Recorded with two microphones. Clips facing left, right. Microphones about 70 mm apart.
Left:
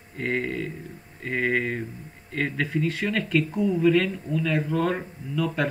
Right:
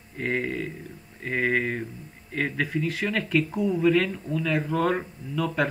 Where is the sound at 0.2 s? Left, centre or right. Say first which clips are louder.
Even; centre.